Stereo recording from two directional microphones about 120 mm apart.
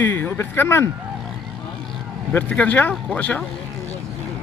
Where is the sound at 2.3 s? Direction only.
10° left (ahead or behind).